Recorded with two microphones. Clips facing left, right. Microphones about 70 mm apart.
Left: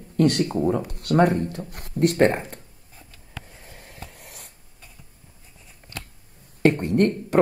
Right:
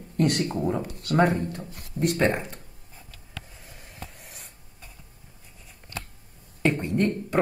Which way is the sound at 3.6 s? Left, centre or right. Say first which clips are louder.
Left 1 dB; left.